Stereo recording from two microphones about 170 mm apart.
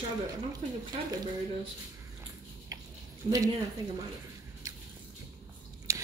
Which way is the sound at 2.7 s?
20° right (ahead or behind).